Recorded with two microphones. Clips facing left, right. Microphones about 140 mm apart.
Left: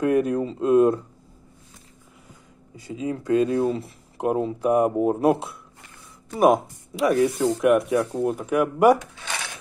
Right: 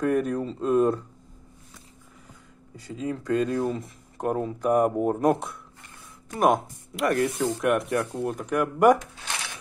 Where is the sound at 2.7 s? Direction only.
10° left (ahead or behind).